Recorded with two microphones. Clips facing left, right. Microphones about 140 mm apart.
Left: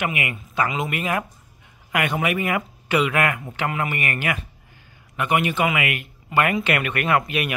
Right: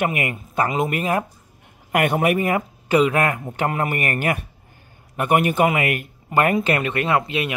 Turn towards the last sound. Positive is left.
turn(degrees=-25)  # may be behind; listen again after turning